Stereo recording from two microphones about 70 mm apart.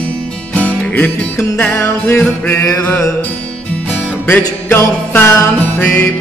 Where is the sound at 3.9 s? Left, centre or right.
Left.